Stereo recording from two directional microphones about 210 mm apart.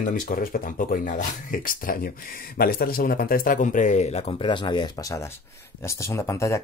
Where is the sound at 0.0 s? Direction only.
40° left (ahead or behind).